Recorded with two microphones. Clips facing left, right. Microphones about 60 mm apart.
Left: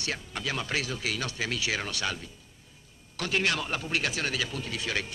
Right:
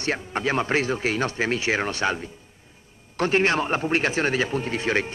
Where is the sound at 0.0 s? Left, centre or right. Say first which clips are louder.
Right 8 dB; right.